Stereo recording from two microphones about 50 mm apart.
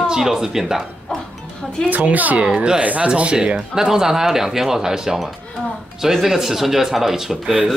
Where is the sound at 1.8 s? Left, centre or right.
Right.